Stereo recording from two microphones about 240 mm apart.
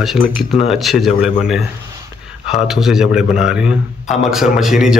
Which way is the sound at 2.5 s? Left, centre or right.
Centre.